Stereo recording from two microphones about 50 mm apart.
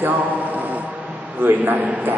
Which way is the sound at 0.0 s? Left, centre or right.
Right.